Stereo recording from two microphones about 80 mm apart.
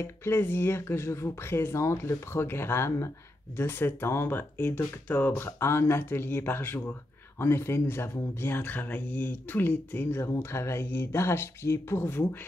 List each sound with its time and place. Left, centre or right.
0.0 s speech: left